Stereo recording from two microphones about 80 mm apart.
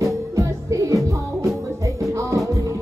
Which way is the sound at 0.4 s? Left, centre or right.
Right.